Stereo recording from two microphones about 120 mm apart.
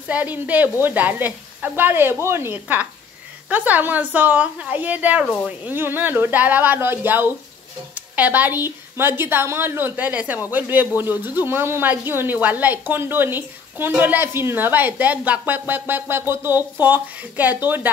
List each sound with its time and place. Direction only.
0.1 s speech: 15° right (ahead or behind)